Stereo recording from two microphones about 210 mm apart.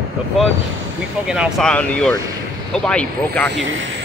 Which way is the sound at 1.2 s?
5° right (ahead or behind).